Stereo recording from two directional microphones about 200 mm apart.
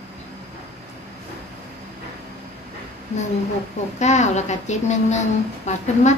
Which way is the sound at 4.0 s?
35° left (ahead or behind).